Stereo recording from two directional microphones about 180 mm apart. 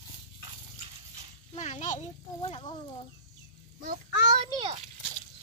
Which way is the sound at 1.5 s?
40° left (ahead or behind).